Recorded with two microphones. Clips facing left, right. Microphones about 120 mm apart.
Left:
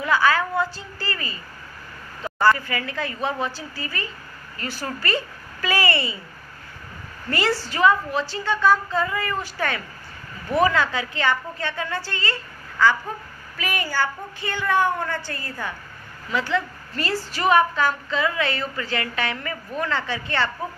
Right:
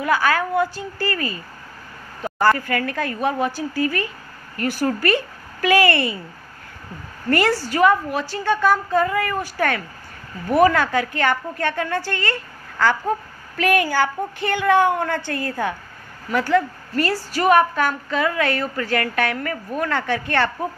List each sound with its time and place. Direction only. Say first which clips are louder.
0.0 s a woman's voice: right 1 dB; 50° right (ahead or behind)
7.2 s a woman's voice: right 5 dB; 50° right (ahead or behind)
13.6 s speech: right 7 dB; 60° right (ahead or behind)
16.3 s a woman's voice: right 6 dB; 50° right (ahead or behind)